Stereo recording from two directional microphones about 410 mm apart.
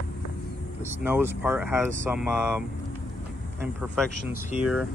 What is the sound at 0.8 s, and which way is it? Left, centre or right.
Speech, centre.